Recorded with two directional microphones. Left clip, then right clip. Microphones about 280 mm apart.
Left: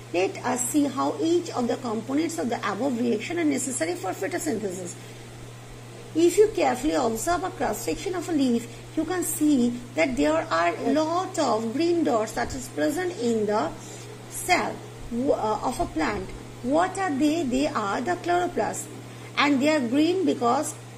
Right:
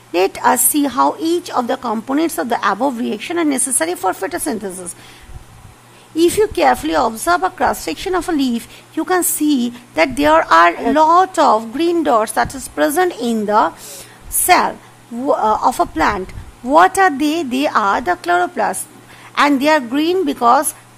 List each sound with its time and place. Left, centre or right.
0.1 s a woman's voice: right
6.1 s a woman's voice: right
15.3 s a woman's voice: right